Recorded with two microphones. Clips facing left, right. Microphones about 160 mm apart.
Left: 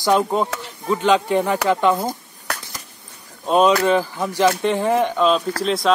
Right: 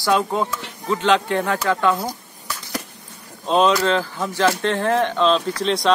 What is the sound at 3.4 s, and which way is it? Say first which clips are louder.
Speech: left 2 dB; 10° left (ahead or behind).